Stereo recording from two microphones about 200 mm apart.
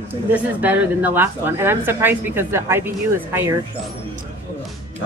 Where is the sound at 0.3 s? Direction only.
10° right (ahead or behind).